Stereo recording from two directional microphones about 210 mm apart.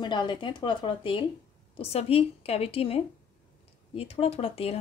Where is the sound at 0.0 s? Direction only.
20° left (ahead or behind).